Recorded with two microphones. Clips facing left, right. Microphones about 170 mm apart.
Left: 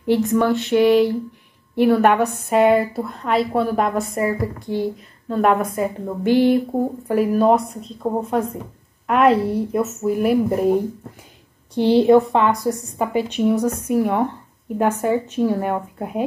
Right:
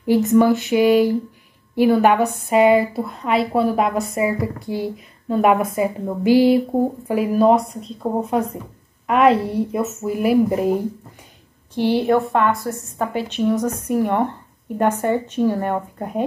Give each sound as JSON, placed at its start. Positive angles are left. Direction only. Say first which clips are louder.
{"t": 0.0, "sound": "a woman's voice", "louder": "right 3 dB", "side_deg": -5}
{"t": 12.1, "sound": "a woman's voice", "louder": "left 3 dB", "side_deg": 20}